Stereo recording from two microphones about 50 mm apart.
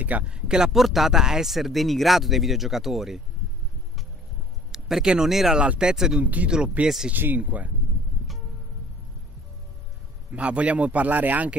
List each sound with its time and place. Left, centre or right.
0.0 s speech: right
0.3 s speech: centre
0.7 s speech: centre
4.7 s speech: centre
5.6 s speech: centre
7.1 s speech: right
10.3 s speech: right